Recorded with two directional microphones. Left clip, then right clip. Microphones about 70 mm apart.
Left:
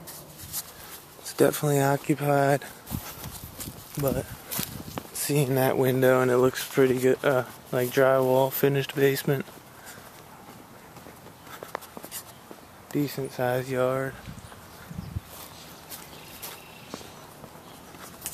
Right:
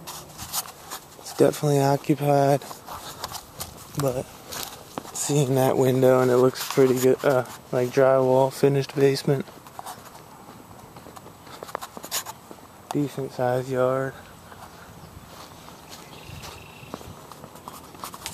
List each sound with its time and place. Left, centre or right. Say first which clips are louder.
1.2 s speech: right 2 dB; centre
2.0 s speech: right 3 dB; right
3.9 s speech: right 2 dB; centre
4.5 s walk: right 1 dB; left
5.1 s speech: right 3 dB; right
5.7 s speech: right 3 dB; right
6.2 s speech: right 3 dB; centre
8.3 s speech: right 3 dB; right
12.8 s speech: right 2 dB; centre